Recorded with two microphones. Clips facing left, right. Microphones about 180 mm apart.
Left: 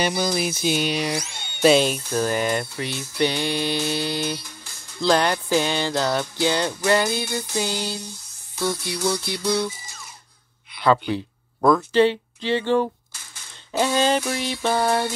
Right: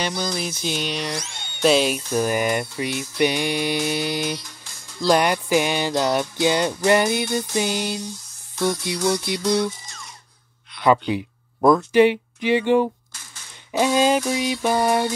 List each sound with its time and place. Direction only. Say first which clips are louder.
0.0 s music: left 3 dB; 5° left (ahead or behind)
1.3 s speech: left 1 dB; centre (ahead or behind)
2.1 s music: right 1 dB; 15° right (ahead or behind)
8.6 s music: right 3 dB; 5° left (ahead or behind)
9.0 s music: right 3 dB; 20° right (ahead or behind)
9.7 s music: right 3 dB; 5° left (ahead or behind)
10.8 s speech: right 1 dB; 15° right (ahead or behind)
13.7 s music: right 2 dB; 15° right (ahead or behind)